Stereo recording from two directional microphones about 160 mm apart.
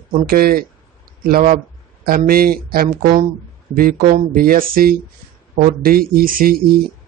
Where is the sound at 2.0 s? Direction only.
70° right (ahead or behind).